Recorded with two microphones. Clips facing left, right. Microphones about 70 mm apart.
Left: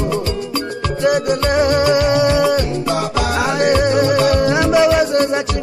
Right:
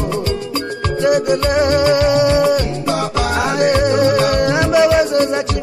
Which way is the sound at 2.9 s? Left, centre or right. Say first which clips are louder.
Right 3 dB; right.